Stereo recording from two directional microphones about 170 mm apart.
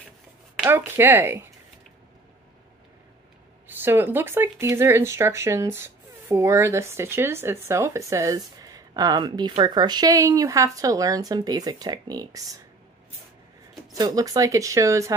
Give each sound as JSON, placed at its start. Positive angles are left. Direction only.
{"t": 0.6, "sound": "speech", "side_deg": -10}
{"t": 3.6, "sound": "speech", "side_deg": -10}
{"t": 13.9, "sound": "speech", "side_deg": -20}